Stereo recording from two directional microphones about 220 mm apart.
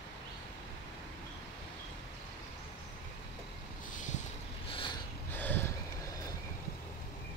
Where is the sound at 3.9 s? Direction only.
35° left (ahead or behind).